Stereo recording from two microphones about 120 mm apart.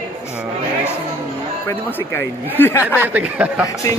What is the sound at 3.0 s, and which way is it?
Speech, 15° right (ahead or behind).